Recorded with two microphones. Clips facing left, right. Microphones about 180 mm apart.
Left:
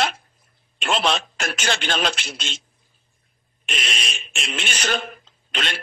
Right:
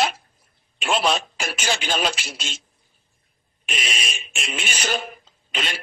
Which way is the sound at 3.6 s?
5° right (ahead or behind).